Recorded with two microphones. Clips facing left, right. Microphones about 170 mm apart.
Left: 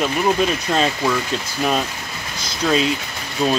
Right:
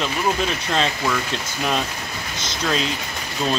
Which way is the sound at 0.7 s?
10° left (ahead or behind).